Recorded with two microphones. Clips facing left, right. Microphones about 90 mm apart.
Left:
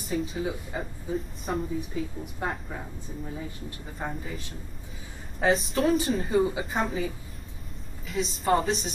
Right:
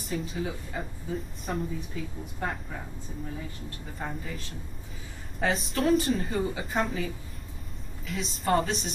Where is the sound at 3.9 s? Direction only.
Centre (ahead or behind).